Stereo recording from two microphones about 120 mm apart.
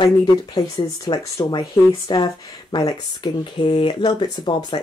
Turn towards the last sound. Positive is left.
turn(degrees=40)  # may be behind; listen again after turning